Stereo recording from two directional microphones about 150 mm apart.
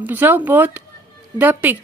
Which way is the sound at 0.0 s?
15° right (ahead or behind).